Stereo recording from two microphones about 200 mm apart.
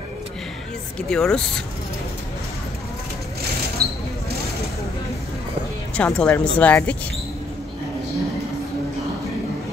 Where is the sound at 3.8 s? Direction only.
50° right (ahead or behind).